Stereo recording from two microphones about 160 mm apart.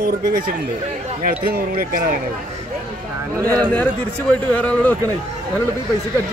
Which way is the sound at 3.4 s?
20° right (ahead or behind).